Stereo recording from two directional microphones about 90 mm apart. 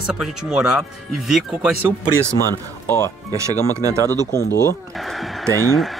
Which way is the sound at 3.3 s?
35° right (ahead or behind).